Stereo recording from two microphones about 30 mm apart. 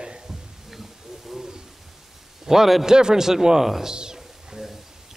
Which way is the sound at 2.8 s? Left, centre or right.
Right.